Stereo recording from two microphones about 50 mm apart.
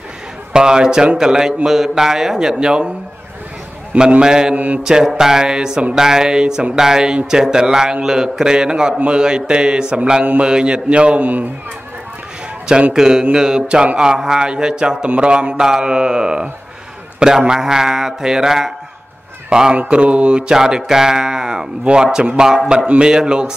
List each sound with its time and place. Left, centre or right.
0.5 s speech: centre
3.9 s a man's voice: right
12.9 s speech: centre